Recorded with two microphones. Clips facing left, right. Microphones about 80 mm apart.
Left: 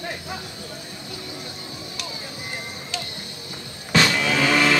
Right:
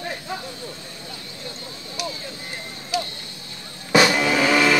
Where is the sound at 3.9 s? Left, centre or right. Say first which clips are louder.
Right 3 dB; centre.